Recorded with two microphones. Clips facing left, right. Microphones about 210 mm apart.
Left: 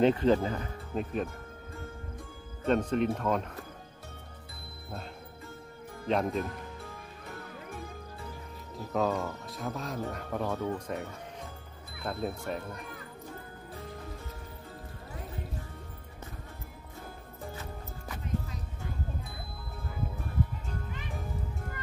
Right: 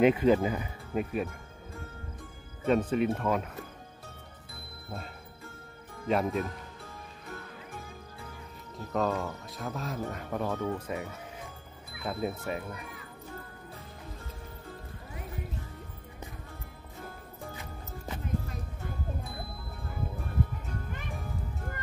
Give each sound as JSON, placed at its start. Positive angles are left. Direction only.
{"t": 0.0, "sound": "speech", "side_deg": -10}
{"t": 2.6, "sound": "speech", "side_deg": -5}
{"t": 6.0, "sound": "speech", "side_deg": -5}
{"t": 8.7, "sound": "speech", "side_deg": 0}
{"t": 17.6, "sound": "music", "side_deg": -25}